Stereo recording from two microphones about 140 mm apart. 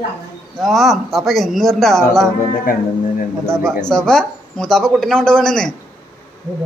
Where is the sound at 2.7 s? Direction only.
90° left.